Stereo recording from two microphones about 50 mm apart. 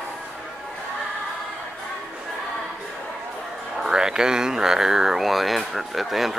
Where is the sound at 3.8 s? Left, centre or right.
Centre.